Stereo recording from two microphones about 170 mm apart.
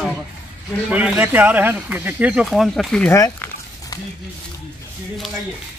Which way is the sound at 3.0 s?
15° left (ahead or behind).